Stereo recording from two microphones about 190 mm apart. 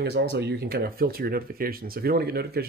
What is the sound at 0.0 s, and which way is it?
Speech, 65° right (ahead or behind).